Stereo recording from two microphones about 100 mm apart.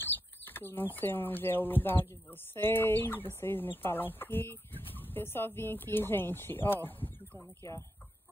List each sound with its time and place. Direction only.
0.0 s speech: 20° left (ahead or behind)